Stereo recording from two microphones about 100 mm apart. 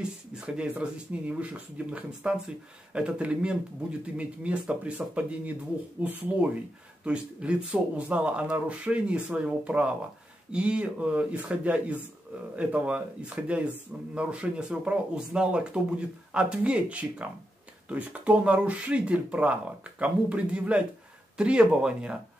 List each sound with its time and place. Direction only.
0.3 s speech: 10° right (ahead or behind)